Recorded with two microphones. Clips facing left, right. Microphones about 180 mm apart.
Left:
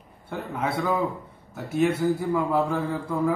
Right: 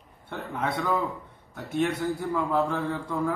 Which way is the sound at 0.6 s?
5° left (ahead or behind).